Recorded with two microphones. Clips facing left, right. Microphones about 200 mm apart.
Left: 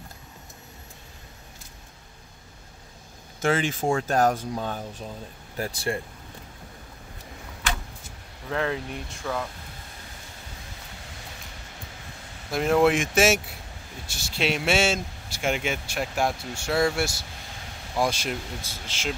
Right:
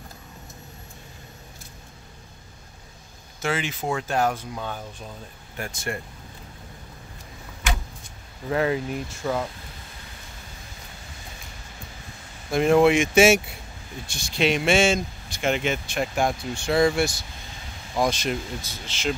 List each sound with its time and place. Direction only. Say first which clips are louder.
3.3 s speech: left 3 dB; 50° left (ahead or behind)
3.8 s speech: left 2 dB; 35° left (ahead or behind)
8.5 s speech: right 4 dB; 5° right (ahead or behind)
12.4 s speech: right 3 dB; centre (ahead or behind)